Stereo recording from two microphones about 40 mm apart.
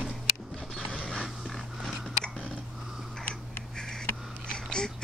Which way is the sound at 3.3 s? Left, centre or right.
Centre.